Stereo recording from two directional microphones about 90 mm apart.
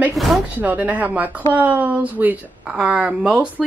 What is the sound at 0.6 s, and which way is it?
Speech, 20° right (ahead or behind).